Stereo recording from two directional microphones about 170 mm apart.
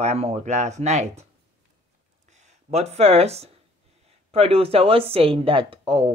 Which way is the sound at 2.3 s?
40° right (ahead or behind).